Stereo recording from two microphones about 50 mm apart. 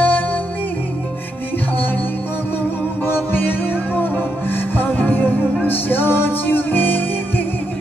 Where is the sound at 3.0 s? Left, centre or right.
Left.